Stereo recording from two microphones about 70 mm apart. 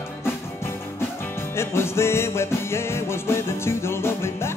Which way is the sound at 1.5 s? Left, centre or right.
Left.